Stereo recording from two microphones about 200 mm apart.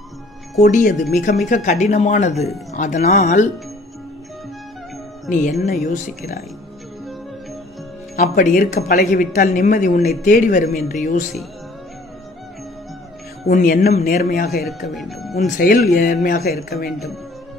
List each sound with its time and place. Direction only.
0.6 s speech: 40° left (ahead or behind)
1.5 s speech: 40° left (ahead or behind)
5.7 s speech: 40° left (ahead or behind)
8.2 s speech: 45° left (ahead or behind)
13.5 s speech: 45° left (ahead or behind)
14.9 s speech: centre (ahead or behind)
15.3 s speech: 40° left (ahead or behind)